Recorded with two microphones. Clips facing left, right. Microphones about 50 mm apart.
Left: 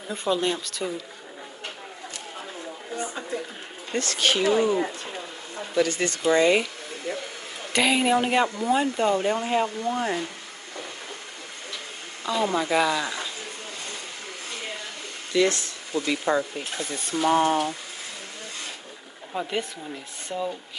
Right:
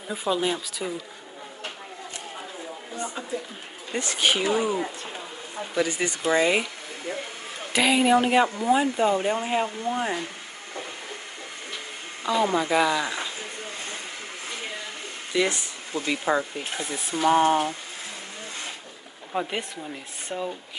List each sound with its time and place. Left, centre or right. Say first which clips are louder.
0.1 s speech: even; centre
3.9 s speech: even; centre
5.8 s speech: left 2 dB; centre
7.7 s speech: right 1 dB; centre
12.5 s speech: right 1 dB; centre
15.3 s speech: left 3 dB; centre
19.3 s speech: even; right